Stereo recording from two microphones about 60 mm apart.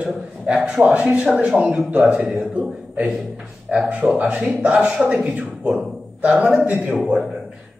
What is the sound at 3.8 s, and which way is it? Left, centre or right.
A man's voice, right.